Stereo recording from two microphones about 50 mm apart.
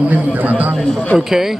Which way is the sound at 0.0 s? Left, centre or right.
Right.